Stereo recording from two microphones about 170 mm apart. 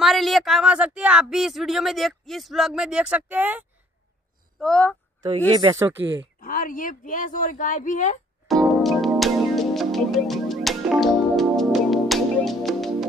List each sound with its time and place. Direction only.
0.0 s speech: centre (ahead or behind)
4.6 s speech: 5° left (ahead or behind)
5.5 s speech: 25° right (ahead or behind)
6.4 s speech: 55° left (ahead or behind)
8.5 s music: centre (ahead or behind)